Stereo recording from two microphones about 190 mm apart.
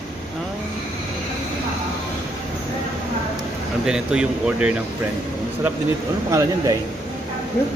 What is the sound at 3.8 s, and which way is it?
Speech, 5° right (ahead or behind).